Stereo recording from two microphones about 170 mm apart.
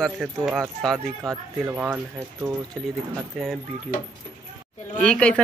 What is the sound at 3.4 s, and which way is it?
Speech, centre (ahead or behind).